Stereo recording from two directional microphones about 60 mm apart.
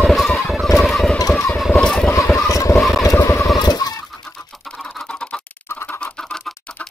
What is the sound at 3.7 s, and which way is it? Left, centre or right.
Chicken, left.